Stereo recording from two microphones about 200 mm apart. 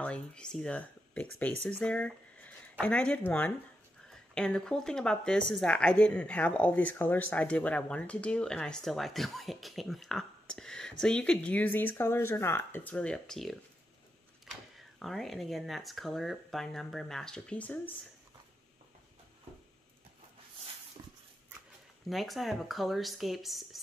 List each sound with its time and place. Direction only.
0.0 s speech: 5° left (ahead or behind)
21.0 s dog: 20° right (ahead or behind)
22.1 s speech: centre (ahead or behind)